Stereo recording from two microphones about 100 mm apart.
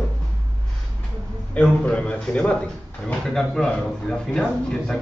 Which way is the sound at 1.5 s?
10° left (ahead or behind).